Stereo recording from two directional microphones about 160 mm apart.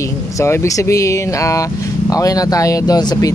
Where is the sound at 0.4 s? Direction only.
20° left (ahead or behind).